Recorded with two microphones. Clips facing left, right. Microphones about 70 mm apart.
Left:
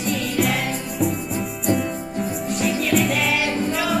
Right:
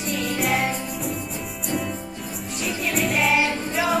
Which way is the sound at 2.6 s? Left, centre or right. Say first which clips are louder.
Left 4 dB; centre.